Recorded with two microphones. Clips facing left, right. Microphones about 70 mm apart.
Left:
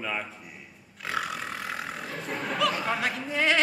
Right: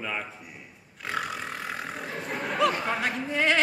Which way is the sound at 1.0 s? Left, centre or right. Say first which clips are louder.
Even; centre.